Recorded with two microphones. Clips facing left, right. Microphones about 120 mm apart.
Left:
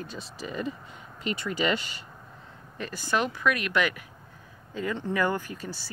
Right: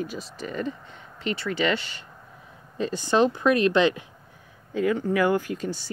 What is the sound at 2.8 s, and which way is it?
Speech, 20° right (ahead or behind).